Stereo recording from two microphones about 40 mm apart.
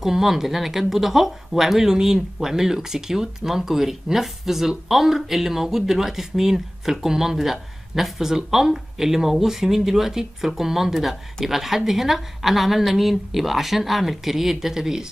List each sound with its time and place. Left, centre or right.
0.0 s speech: centre